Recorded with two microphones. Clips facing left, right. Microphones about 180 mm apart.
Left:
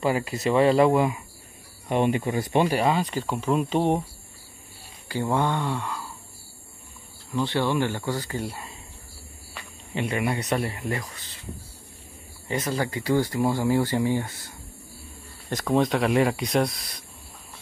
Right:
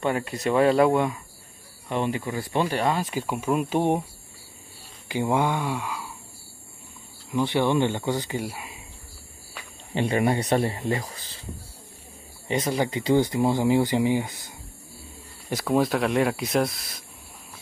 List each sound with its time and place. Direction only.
0.0 s speech: 5° left (ahead or behind)
1.9 s speech: 20° left (ahead or behind)
2.8 s speech: centre (ahead or behind)
5.0 s speech: 15° right (ahead or behind)
7.2 s speech: 15° right (ahead or behind)
9.9 s speech: 35° right (ahead or behind)
12.4 s speech: 20° right (ahead or behind)
15.5 s speech: 5° right (ahead or behind)